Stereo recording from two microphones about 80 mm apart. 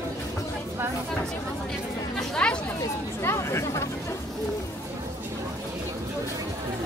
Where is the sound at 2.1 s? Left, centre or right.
Centre.